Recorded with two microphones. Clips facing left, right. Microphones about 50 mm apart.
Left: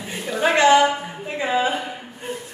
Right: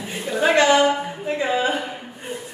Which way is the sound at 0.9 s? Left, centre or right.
Centre.